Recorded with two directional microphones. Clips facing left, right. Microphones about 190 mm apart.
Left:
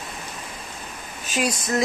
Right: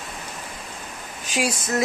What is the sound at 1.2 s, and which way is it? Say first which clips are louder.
Speech: even; 10° right (ahead or behind).